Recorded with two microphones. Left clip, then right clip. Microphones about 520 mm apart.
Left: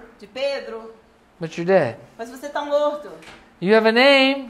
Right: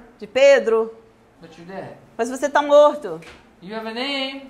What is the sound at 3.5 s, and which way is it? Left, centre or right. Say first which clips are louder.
Speech: left 14 dB; left.